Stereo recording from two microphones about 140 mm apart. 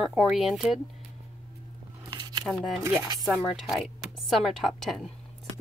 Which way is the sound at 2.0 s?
30° right (ahead or behind).